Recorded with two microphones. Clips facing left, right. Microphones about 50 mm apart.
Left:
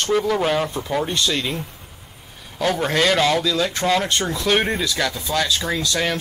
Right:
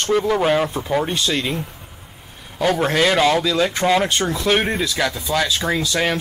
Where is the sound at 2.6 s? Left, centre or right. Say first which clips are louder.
Right 2 dB; centre.